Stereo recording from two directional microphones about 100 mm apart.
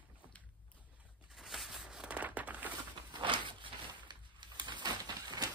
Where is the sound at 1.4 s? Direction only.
5° right (ahead or behind).